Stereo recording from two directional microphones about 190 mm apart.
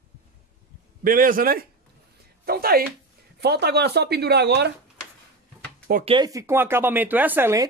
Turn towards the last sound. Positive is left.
turn(degrees=-15)  # may be behind; listen again after turning